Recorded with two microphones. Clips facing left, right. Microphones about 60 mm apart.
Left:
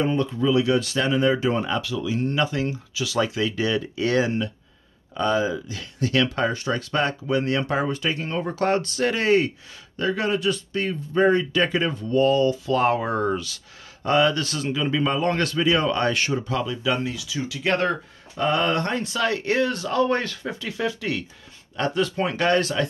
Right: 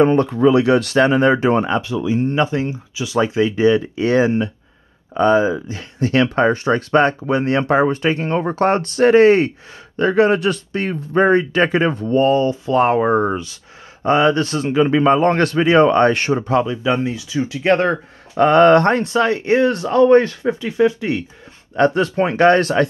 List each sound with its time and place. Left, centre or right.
0.0 s speech: right
16.6 s speech: right
18.3 s speech: right
19.1 s speech: right
21.7 s speech: right